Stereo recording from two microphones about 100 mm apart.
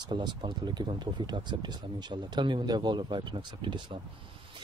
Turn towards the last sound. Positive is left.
turn(degrees=-55)  # may be behind; listen again after turning